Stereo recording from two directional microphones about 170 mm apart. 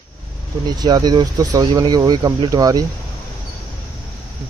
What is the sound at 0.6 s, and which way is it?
Speech, 25° right (ahead or behind).